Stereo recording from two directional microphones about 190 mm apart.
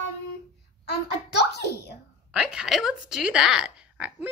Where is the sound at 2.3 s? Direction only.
5° right (ahead or behind).